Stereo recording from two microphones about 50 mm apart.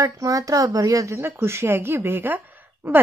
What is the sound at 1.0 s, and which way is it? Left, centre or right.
Speech, right.